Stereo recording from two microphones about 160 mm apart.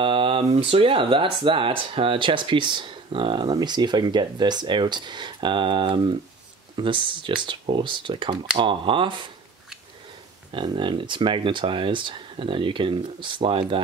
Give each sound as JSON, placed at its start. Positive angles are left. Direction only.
{"t": 0.0, "sound": "speech", "side_deg": -30}
{"t": 10.5, "sound": "speech", "side_deg": -30}